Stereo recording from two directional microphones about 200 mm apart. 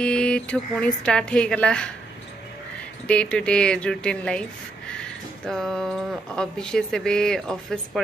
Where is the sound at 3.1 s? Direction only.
5° left (ahead or behind).